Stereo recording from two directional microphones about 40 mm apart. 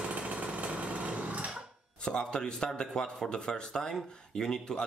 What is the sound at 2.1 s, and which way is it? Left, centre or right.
Speech, centre.